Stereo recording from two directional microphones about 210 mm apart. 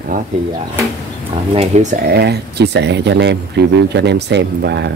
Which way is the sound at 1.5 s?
30° right (ahead or behind).